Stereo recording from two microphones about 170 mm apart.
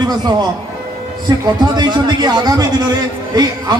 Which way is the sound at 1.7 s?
25° right (ahead or behind).